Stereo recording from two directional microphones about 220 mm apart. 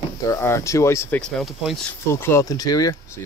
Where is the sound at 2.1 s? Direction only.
10° left (ahead or behind).